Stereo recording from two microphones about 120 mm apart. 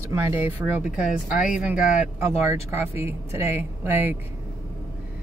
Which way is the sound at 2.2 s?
20° right (ahead or behind).